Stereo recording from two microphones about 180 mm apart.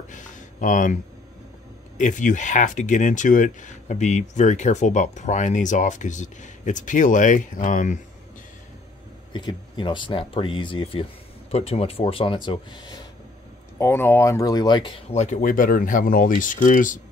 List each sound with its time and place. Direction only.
0.1 s a sound: 45° left (ahead or behind)
2.0 s speech: 45° left (ahead or behind)
9.3 s speech: 25° left (ahead or behind)
13.7 s speech: 15° left (ahead or behind); by 17.0 s 45° left (ahead or behind)